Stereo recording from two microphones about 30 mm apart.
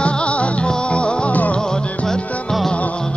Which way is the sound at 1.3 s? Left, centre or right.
Left.